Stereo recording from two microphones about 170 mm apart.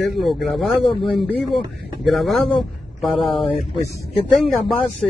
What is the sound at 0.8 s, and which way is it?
Speech, 30° left (ahead or behind).